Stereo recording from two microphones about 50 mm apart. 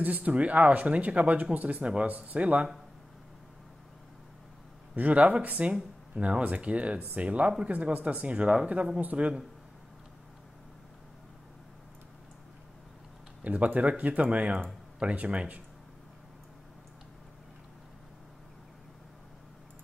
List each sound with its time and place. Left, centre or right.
0.0 s speech: right
4.9 s speech: right
13.4 s speech: right